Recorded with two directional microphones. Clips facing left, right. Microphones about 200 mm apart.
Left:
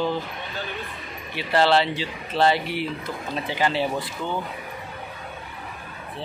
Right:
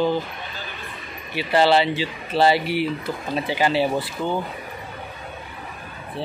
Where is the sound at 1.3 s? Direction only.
5° right (ahead or behind).